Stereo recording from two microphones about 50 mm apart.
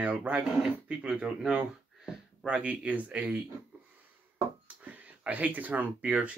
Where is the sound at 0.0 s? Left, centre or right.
Right.